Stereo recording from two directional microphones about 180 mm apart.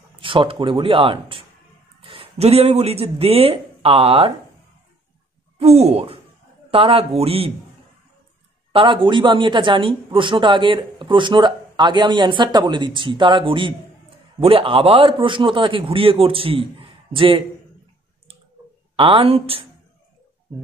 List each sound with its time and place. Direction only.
0.1 s a man's voice: 30° right (ahead or behind)
5.6 s a man's voice: 35° right (ahead or behind)
8.7 s a man's voice: 30° right (ahead or behind)
18.9 s a man's voice: 30° right (ahead or behind)